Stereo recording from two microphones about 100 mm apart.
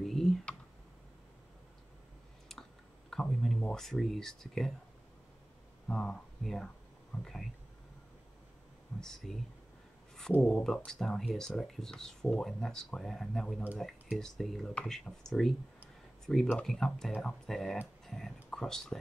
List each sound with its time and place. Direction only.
0.0 s computer keyboard: 5° left (ahead or behind)
3.1 s speech: 5° left (ahead or behind)
5.9 s speech: 5° left (ahead or behind)
9.0 s speech: 5° left (ahead or behind)
10.4 s speech: 5° left (ahead or behind)
16.5 s speech: 5° left (ahead or behind)